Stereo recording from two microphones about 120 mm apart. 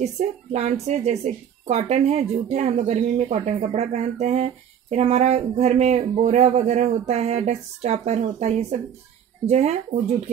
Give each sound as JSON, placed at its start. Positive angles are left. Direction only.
{"t": 0.0, "sound": "speech", "side_deg": -70}